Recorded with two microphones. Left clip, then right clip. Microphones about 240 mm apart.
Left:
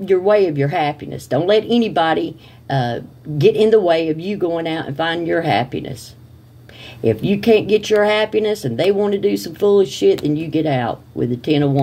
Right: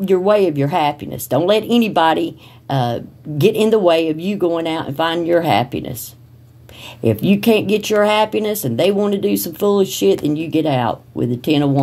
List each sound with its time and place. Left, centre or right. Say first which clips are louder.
0.0 s speech: even; right